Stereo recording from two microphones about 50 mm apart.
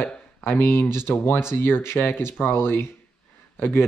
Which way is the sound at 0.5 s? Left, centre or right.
Left.